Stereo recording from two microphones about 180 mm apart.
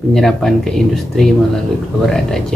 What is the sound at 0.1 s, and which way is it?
Speech, centre (ahead or behind).